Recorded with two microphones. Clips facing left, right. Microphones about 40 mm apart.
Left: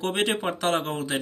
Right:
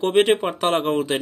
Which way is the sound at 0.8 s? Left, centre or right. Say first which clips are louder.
Right 7 dB; right.